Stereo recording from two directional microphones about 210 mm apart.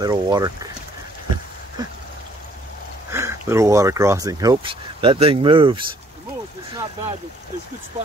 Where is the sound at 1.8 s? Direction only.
20° right (ahead or behind).